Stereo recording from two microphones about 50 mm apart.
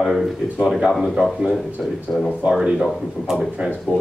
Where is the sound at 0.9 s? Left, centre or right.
Centre.